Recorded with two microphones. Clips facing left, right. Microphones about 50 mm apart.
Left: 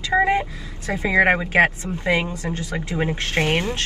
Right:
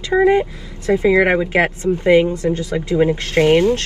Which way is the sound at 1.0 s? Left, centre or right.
Left.